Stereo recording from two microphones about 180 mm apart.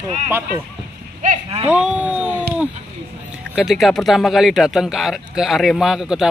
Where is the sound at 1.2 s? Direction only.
35° right (ahead or behind).